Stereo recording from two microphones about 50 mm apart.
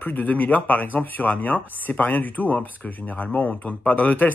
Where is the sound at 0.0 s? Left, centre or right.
Left.